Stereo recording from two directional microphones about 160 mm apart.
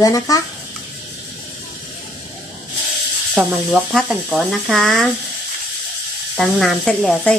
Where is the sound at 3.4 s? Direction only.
5° right (ahead or behind).